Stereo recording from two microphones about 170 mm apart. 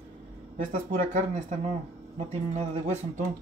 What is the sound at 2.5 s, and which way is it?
Speech, 45° right (ahead or behind).